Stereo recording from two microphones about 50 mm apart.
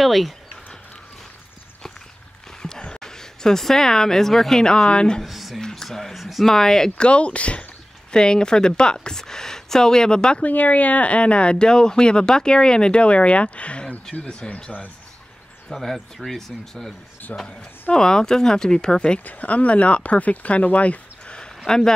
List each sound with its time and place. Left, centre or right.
0.0 s speech: centre
2.6 s a woman's voice: centre
5.2 s speech: centre
5.6 s speech: centre
6.5 s speech: centre
7.0 s speech: left
10.4 s speech: left
15.7 s speech: centre
17.3 s speech: left
17.9 s speech: centre
19.2 s speech: left
21.6 s speech: centre